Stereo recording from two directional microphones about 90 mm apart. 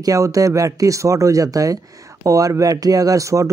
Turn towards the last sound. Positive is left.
turn(degrees=-35)  # may be behind; listen again after turning